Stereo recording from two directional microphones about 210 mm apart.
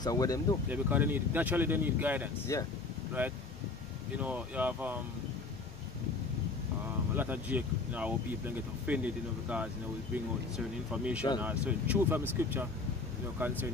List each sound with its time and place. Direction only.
0.0 s speech: 15° left (ahead or behind)
0.7 s speech: 10° right (ahead or behind)
2.5 s speech: 15° left (ahead or behind)
3.2 s speech: 10° right (ahead or behind)
7.2 s speech: 10° right (ahead or behind)
10.9 s speech: 5° right (ahead or behind)